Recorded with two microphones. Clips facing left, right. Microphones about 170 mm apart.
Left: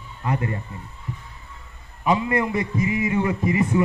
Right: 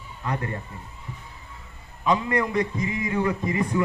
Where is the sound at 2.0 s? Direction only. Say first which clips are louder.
Left 2 dB; 20° left (ahead or behind).